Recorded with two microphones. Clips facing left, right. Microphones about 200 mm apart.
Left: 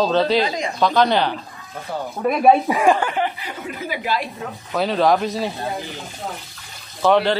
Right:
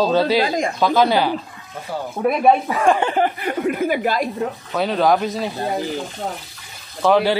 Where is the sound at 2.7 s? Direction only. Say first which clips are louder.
Left 2 dB; 15° left (ahead or behind).